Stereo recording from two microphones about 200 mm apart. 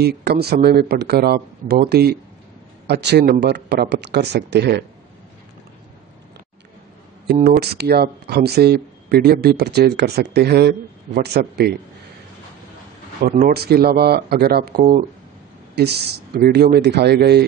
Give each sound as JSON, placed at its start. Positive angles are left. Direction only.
{"t": 0.0, "sound": "speech", "side_deg": -55}
{"t": 7.6, "sound": "speech", "side_deg": -55}
{"t": 13.2, "sound": "speech", "side_deg": -50}